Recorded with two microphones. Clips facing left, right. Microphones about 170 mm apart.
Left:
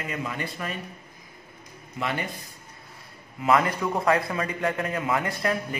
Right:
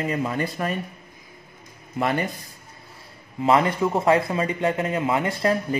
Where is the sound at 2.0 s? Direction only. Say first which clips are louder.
Right 6 dB; 45° right (ahead or behind).